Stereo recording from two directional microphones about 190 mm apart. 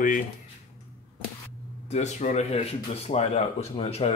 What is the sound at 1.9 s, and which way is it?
Speech, 35° left (ahead or behind).